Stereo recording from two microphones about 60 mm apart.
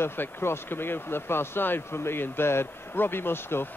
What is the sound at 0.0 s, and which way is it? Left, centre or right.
Speech, left.